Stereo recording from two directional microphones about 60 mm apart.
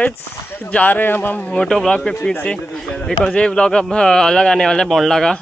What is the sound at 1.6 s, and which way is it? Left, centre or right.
A man's voice, centre.